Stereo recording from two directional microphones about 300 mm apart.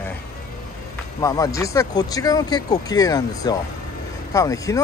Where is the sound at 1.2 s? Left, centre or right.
Centre.